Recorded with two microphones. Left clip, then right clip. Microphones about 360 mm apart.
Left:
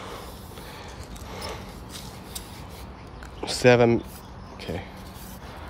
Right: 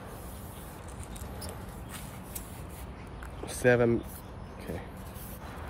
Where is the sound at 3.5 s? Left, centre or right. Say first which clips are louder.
Left 7 dB; centre.